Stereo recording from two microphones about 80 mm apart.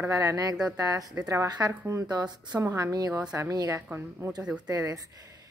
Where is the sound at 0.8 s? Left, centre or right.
Right.